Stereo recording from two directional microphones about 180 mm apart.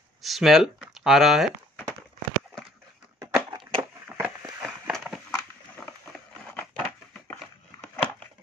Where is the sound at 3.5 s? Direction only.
30° right (ahead or behind).